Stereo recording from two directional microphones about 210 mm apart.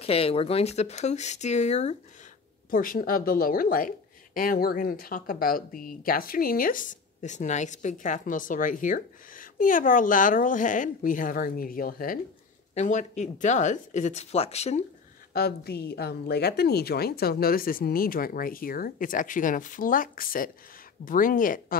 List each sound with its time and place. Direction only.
0.0 s speech: 30° left (ahead or behind)
15.3 s speech: 50° left (ahead or behind)